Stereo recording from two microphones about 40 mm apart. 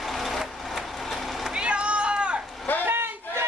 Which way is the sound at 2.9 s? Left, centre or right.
Right.